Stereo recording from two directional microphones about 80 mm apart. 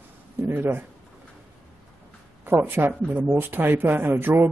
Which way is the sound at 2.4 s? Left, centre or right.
Right.